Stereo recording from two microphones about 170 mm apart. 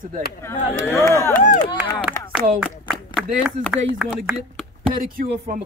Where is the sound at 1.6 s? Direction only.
25° left (ahead or behind).